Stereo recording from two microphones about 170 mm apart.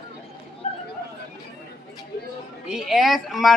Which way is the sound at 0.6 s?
40° left (ahead or behind).